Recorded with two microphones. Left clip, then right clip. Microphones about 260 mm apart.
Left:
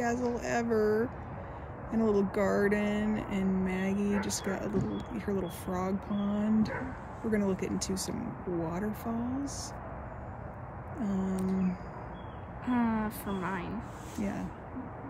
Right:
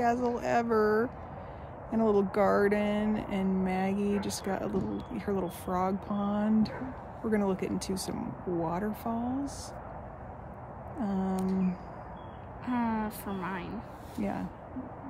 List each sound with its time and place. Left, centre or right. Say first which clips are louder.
0.1 s speech: right 3 dB; centre
11.0 s speech: right 2 dB; centre
12.6 s a woman's voice: even; centre